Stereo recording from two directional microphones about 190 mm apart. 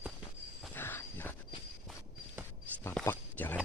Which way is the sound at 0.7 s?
10° left (ahead or behind).